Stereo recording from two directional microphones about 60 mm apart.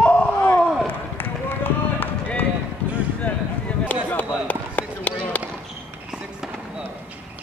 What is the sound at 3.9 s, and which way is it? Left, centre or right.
Chop, left.